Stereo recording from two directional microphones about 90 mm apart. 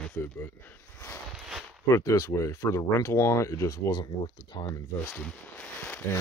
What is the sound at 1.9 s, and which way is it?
Speech, 35° left (ahead or behind).